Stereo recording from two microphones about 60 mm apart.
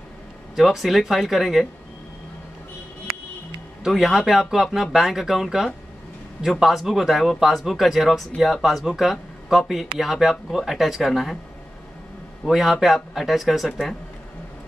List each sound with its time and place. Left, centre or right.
0.6 s speech: centre
3.8 s speech: centre
12.4 s speech: centre